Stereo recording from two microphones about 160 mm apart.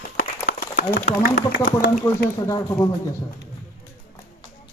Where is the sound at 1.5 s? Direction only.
90° left.